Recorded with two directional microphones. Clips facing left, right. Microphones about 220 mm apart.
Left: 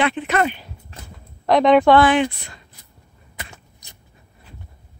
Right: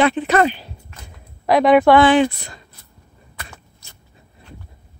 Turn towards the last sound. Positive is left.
turn(degrees=15)  # may be behind; listen again after turning